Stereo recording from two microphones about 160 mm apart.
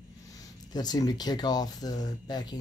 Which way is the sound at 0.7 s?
25° left (ahead or behind).